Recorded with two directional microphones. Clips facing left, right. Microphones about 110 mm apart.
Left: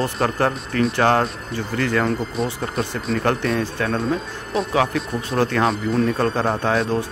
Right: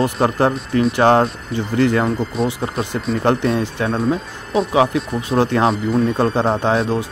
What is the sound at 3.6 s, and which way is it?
Speech, 20° right (ahead or behind).